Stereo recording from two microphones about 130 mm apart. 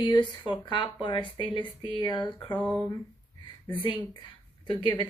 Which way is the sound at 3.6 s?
35° left (ahead or behind).